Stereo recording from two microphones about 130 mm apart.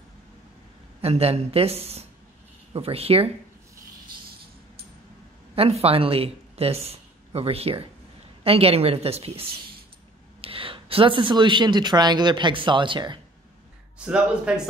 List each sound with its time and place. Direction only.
1.0 s speech: 50° right (ahead or behind)
5.6 s speech: 50° right (ahead or behind)
13.9 s speech: 10° right (ahead or behind)